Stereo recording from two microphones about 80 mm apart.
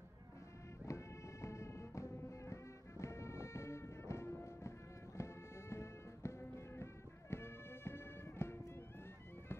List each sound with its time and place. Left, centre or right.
0.8 s music: left